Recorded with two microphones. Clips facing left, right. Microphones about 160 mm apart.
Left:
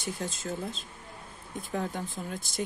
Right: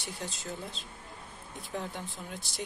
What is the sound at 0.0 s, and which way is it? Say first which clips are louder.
Speech: left 5 dB; 45° left (ahead or behind).